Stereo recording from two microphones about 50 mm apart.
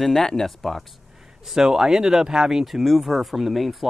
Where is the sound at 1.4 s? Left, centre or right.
Centre.